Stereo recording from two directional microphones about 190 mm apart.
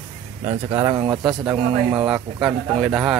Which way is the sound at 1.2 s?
5° right (ahead or behind).